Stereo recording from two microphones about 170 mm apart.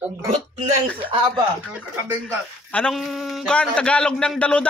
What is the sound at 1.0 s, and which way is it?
Speech, 30° right (ahead or behind).